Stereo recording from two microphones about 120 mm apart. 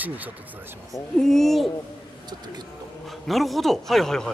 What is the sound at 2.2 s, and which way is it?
Speech, 35° right (ahead or behind).